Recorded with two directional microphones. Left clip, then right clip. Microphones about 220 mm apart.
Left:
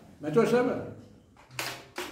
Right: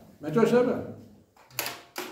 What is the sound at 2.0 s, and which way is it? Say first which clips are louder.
Tap: even; 50° right (ahead or behind).